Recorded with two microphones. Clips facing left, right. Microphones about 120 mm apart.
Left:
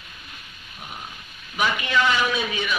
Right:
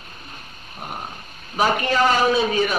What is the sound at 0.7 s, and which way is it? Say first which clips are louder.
Dog: right 6 dB; 40° right (ahead or behind).